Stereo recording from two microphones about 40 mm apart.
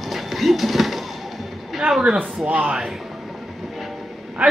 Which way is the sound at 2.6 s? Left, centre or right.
Centre.